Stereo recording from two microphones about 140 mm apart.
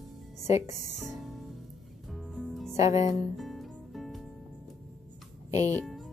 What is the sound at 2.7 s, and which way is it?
Speech, 50° left (ahead or behind).